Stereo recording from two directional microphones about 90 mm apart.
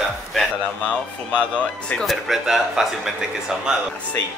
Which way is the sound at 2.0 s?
Centre (ahead or behind).